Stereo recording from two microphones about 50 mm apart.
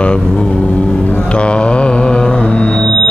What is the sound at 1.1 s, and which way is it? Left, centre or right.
Music, left.